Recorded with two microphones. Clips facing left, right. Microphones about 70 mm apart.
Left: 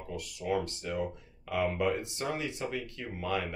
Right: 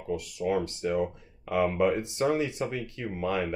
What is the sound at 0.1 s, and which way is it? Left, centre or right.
Speech, right.